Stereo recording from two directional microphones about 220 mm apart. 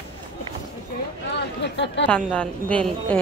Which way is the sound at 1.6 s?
55° left (ahead or behind).